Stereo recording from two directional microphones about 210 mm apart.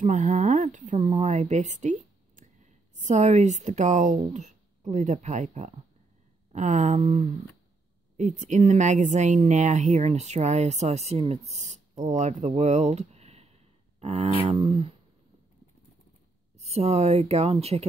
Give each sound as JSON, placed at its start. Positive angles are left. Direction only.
{"t": 0.0, "sound": "speech", "side_deg": -35}
{"t": 16.5, "sound": "speech", "side_deg": -30}